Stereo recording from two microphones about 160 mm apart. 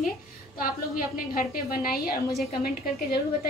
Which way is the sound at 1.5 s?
65° left (ahead or behind).